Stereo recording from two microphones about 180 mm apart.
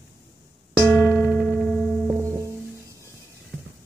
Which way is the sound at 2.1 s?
15° right (ahead or behind).